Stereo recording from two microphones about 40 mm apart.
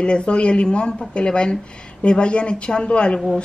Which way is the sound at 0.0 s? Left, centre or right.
Left.